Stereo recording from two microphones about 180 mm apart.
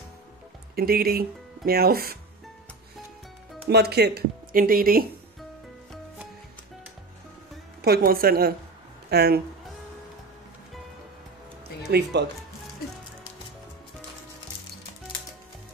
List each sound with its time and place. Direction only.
0.7 s speech: 55° right (ahead or behind)
3.6 s speech: 65° right (ahead or behind)
7.8 s speech: 55° right (ahead or behind)
11.9 s speech: 70° right (ahead or behind)